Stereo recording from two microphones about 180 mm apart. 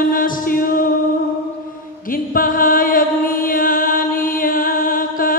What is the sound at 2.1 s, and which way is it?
Chant, 50° left (ahead or behind).